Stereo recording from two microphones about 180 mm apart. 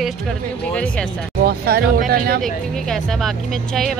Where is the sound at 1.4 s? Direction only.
60° right (ahead or behind).